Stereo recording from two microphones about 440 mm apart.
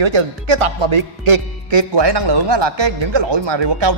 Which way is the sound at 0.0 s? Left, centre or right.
Right.